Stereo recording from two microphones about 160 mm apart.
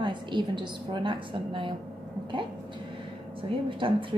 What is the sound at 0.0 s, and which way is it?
A woman's voice, 30° right (ahead or behind).